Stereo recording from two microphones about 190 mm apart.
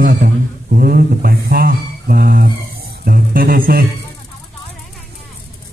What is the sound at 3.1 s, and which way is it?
Guitar, 50° right (ahead or behind).